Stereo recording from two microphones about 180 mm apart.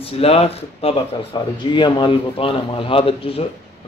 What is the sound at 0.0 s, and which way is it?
Speech, 35° left (ahead or behind).